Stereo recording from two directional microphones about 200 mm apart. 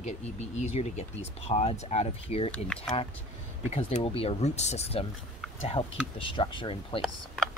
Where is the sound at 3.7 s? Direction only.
30° left (ahead or behind).